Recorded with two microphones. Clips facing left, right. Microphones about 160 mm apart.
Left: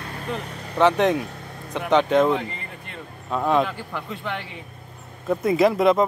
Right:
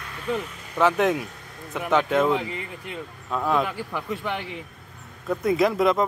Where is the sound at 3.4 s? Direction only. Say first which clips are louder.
Left 3 dB; 5° right (ahead or behind).